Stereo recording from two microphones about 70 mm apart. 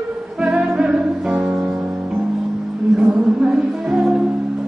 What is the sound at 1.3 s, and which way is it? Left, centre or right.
Guitar, centre.